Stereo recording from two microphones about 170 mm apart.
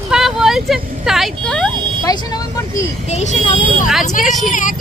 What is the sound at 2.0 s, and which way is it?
Speech, 20° left (ahead or behind).